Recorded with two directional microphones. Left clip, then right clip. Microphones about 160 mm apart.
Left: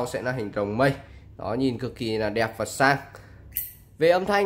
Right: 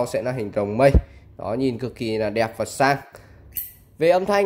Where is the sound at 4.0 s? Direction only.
15° right (ahead or behind).